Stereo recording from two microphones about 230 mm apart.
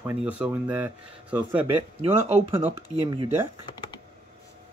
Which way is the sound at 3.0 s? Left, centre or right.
Right.